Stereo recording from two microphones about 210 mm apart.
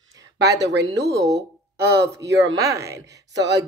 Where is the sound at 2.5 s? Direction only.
15° right (ahead or behind).